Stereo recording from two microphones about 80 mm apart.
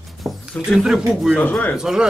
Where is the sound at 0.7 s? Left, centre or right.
Centre.